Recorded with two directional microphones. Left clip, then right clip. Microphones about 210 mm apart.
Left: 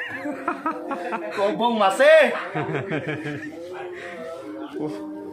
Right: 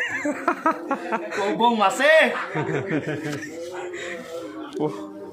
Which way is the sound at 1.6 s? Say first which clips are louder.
Left 1 dB; 10° left (ahead or behind).